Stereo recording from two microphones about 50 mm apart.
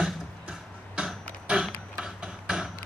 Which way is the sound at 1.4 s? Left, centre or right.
Centre.